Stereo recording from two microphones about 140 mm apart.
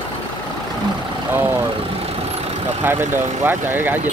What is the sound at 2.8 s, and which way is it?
Speech, 15° right (ahead or behind).